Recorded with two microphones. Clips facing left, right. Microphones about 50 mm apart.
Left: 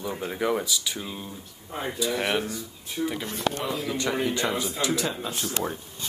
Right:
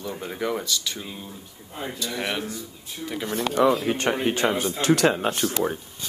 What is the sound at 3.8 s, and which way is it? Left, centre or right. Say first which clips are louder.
Speech: right 4 dB; right.